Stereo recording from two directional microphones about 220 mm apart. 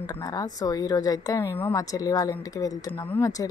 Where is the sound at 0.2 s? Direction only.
15° left (ahead or behind).